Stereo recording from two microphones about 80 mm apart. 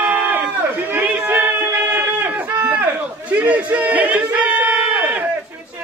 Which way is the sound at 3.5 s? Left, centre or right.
Centre.